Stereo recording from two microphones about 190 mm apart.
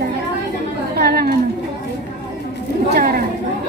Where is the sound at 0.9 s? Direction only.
55° right (ahead or behind).